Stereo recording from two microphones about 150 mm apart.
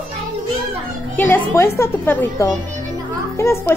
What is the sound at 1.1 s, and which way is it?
A child's voice, 10° left (ahead or behind).